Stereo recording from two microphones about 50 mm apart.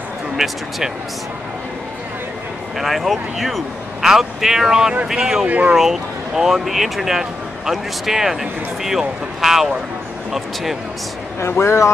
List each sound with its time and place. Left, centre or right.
0.4 s speech: centre
2.8 s speech: centre
5.5 s speech: right
5.8 s speech: centre
11.4 s speech: left